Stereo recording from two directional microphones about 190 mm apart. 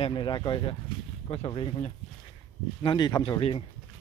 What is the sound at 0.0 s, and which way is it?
Speech, 25° left (ahead or behind).